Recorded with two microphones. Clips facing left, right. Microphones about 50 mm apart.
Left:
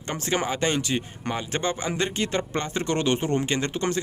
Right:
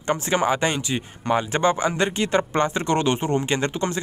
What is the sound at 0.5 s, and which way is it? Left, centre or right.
Speech, right.